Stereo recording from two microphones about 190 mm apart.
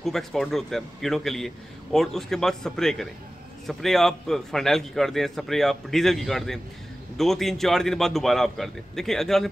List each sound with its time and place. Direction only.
0.0 s a man's voice: centre (ahead or behind)